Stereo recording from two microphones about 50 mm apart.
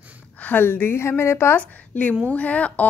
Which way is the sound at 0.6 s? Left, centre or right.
Left.